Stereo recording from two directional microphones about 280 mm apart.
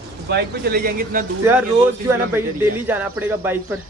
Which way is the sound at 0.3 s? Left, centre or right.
Right.